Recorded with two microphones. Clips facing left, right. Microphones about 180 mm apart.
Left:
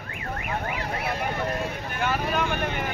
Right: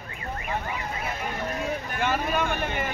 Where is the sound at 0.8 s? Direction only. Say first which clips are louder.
Left 3 dB; 70° left (ahead or behind).